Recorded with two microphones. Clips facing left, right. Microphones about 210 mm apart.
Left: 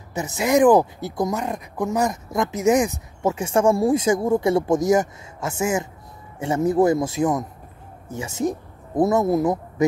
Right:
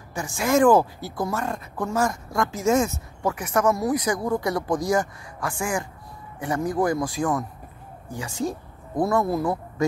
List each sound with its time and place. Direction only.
0.1 s speech: 20° left (ahead or behind)